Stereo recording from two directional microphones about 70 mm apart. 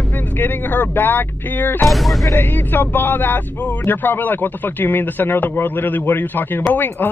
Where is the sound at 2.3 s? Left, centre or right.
Left.